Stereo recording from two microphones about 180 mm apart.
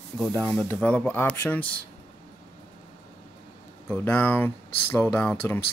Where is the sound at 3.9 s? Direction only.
10° left (ahead or behind).